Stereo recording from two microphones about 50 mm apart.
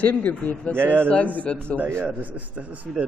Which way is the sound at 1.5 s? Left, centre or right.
Left.